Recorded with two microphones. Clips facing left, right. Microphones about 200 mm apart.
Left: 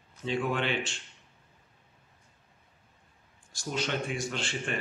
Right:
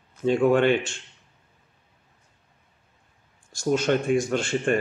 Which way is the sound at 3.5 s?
45° right (ahead or behind).